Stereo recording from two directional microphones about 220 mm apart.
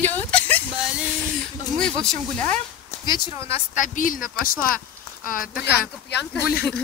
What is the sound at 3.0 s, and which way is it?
Speech, 20° left (ahead or behind).